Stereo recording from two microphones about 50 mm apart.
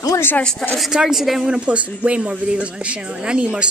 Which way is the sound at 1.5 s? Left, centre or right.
Right.